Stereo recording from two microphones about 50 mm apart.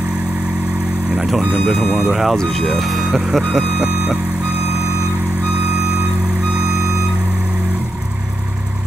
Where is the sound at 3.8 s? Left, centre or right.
Right.